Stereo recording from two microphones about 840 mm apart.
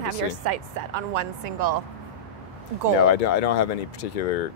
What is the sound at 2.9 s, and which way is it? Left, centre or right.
Speech, left.